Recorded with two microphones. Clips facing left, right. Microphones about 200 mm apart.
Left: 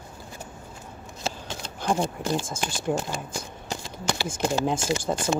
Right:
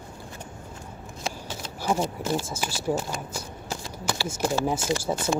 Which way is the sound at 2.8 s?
5° right (ahead or behind).